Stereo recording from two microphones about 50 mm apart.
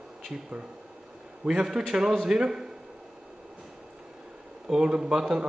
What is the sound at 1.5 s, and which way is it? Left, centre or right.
A man's voice, centre.